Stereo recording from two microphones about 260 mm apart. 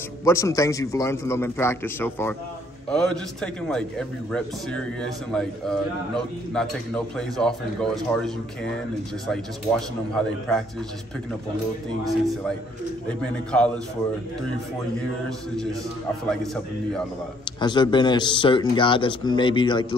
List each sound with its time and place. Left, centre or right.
0.2 s a man's voice: centre
13.2 s a man's voice: centre
15.2 s a man's voice: centre
17.6 s speech: centre